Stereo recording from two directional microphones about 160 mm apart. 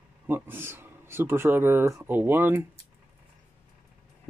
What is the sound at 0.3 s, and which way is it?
Speech, 15° right (ahead or behind).